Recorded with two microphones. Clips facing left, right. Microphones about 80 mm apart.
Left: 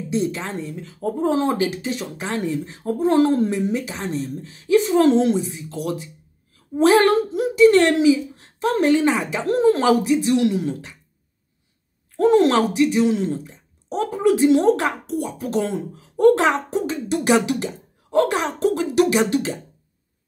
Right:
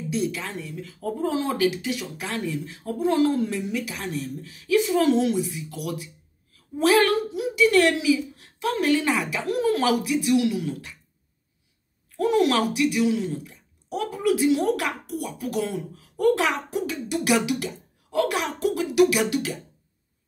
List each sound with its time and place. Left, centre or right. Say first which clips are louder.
0.1 s speech: left 4 dB; left
12.2 s speech: left 5 dB; left